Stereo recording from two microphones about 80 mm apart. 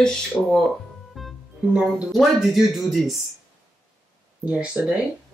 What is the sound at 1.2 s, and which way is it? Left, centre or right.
Music, centre.